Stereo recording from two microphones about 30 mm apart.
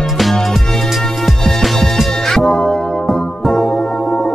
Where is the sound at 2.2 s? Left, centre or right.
Centre.